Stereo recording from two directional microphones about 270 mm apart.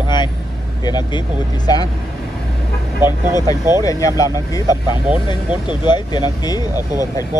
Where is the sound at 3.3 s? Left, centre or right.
Centre.